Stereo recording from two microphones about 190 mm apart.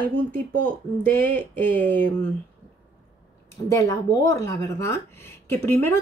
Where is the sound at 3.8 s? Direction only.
20° left (ahead or behind).